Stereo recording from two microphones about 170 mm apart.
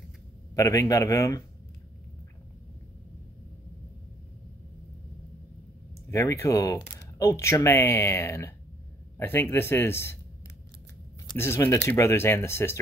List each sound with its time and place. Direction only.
0.6 s speech: 20° left (ahead or behind)
6.0 s speech: 15° left (ahead or behind)
11.3 s speech: 15° left (ahead or behind)